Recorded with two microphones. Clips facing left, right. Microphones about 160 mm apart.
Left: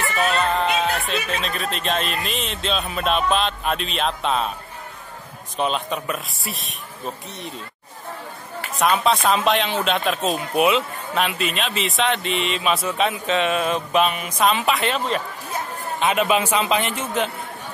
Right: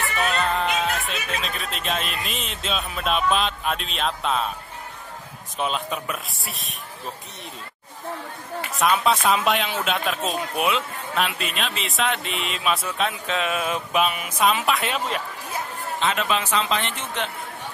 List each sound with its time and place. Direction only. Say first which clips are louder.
0.0 s music: left 3 dB; 40° left (ahead or behind)
0.3 s music: left 2 dB; centre (ahead or behind)
1.0 s speech: left 4 dB; centre (ahead or behind)
5.6 s speech: left 3 dB; centre (ahead or behind)
8.7 s speech: left 2 dB; centre (ahead or behind)
16.0 s a man's voice: left 5 dB; 10° left (ahead or behind)